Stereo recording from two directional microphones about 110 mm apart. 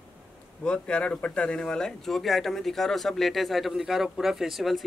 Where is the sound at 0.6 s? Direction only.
10° left (ahead or behind).